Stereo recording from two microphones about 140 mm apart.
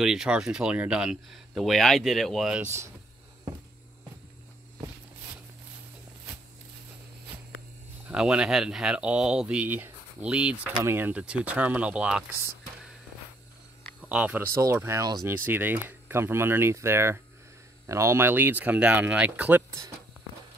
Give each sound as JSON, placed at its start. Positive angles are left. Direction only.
{"t": 0.0, "sound": "speech", "side_deg": -5}
{"t": 8.1, "sound": "speech", "side_deg": -5}
{"t": 14.0, "sound": "speech", "side_deg": -10}